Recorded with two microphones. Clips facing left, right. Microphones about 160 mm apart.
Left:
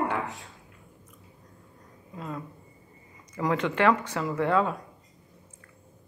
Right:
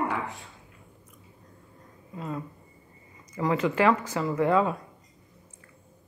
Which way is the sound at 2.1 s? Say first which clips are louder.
Right 2 dB; 5° right (ahead or behind).